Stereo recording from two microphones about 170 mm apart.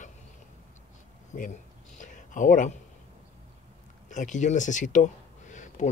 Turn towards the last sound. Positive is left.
turn(degrees=45)  # may be behind; listen again after turning